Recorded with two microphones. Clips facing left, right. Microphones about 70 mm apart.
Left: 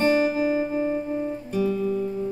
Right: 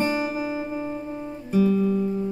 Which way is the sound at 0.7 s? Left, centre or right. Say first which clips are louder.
Left 5 dB; left.